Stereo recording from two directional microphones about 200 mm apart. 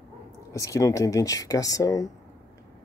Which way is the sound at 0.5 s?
15° left (ahead or behind).